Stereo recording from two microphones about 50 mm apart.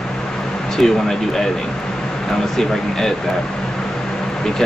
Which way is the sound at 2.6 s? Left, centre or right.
Centre.